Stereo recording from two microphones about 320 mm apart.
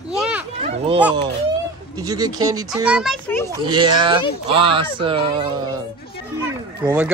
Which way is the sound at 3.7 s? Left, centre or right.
Centre.